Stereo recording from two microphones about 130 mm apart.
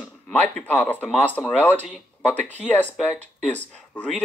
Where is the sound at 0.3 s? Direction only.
10° left (ahead or behind).